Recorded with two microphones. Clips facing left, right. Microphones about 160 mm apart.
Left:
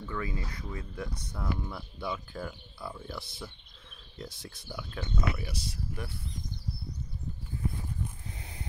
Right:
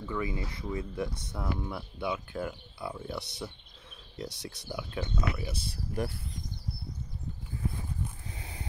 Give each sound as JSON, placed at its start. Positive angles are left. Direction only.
{"t": 0.1, "sound": "speech", "side_deg": -15}
{"t": 2.0, "sound": "speech", "side_deg": 0}
{"t": 2.9, "sound": "speech", "side_deg": -20}
{"t": 4.4, "sound": "speech", "side_deg": -80}
{"t": 4.6, "sound": "speech", "side_deg": -15}
{"t": 5.6, "sound": "speech", "side_deg": -50}